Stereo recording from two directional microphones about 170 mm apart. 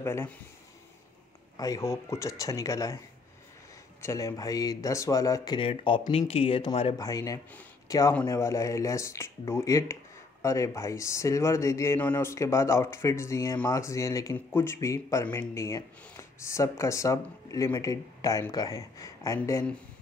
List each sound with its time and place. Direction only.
0.0 s a man's voice: 15° left (ahead or behind)
1.6 s speech: 20° left (ahead or behind)
4.0 s a man's voice: 20° left (ahead or behind)